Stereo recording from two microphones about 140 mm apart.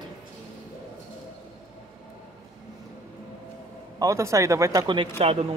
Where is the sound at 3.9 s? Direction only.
20° right (ahead or behind).